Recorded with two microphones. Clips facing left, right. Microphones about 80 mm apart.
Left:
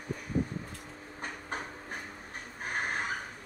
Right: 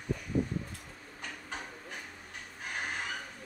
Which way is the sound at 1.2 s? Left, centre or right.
Left.